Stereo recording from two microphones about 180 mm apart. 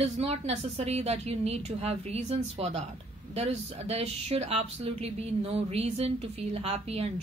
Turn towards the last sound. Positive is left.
turn(degrees=-35)  # may be behind; listen again after turning